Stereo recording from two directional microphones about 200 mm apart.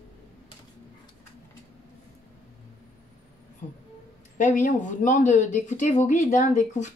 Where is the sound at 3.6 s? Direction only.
35° left (ahead or behind).